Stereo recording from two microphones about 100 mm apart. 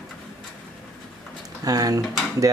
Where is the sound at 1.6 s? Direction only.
35° right (ahead or behind).